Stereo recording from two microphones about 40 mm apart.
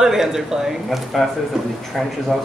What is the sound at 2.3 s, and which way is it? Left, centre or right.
Speech, centre.